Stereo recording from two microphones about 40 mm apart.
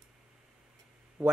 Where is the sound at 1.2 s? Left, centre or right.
Right.